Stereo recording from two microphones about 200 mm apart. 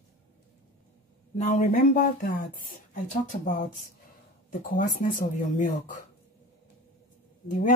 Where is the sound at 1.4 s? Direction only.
35° left (ahead or behind).